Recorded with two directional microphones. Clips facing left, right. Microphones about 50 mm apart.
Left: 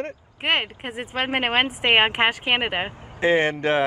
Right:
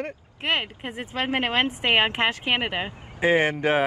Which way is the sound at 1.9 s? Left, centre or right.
Left.